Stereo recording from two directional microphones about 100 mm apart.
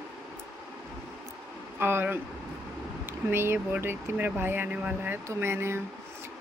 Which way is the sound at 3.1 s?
20° right (ahead or behind).